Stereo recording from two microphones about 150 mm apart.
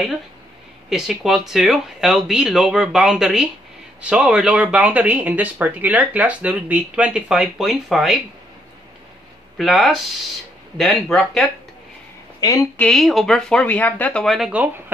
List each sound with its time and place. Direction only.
0.8 s speech: centre (ahead or behind)
9.6 s speech: centre (ahead or behind)
12.4 s a woman's voice: 25° left (ahead or behind)
12.7 s speech: 5° left (ahead or behind)